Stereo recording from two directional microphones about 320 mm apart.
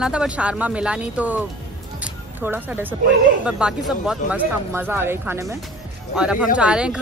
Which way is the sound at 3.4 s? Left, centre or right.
Centre.